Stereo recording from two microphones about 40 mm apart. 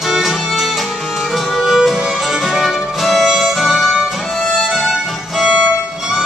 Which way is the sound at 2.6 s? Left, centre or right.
Centre.